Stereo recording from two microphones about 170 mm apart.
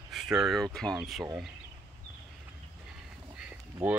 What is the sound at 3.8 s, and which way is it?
Speech, 10° right (ahead or behind).